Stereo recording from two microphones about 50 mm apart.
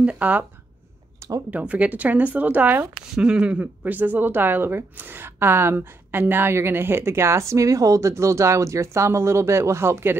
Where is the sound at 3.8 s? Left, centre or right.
Right.